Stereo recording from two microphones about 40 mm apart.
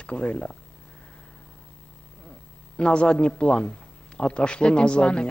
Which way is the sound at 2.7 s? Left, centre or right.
Left.